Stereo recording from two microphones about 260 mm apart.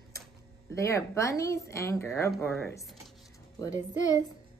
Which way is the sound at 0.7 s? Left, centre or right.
Centre.